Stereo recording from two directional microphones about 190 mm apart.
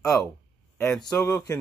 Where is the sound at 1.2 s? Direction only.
15° left (ahead or behind).